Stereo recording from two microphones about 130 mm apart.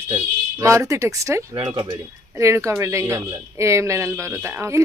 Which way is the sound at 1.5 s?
40° right (ahead or behind).